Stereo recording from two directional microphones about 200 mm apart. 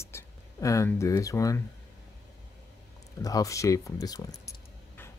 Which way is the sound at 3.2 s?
15° left (ahead or behind).